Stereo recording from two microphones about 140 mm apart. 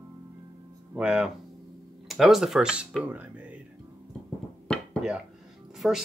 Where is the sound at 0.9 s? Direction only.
10° right (ahead or behind).